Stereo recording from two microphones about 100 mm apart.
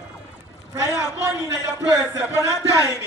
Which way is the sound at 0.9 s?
35° left (ahead or behind).